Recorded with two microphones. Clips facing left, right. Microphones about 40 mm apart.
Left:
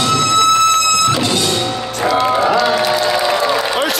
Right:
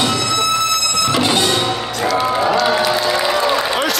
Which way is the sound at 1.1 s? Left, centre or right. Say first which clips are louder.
Right 1 dB; right.